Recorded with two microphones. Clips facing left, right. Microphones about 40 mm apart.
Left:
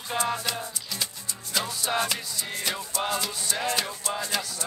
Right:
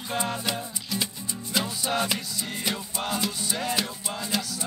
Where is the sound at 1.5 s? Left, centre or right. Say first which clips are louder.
Even; centre.